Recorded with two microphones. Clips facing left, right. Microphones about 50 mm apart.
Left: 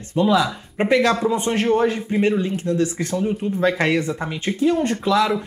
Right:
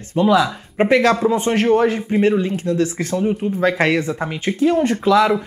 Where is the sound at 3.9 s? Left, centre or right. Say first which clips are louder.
Right 2 dB; right.